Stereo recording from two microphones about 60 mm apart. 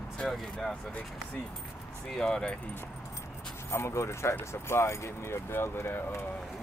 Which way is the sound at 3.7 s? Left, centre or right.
Left.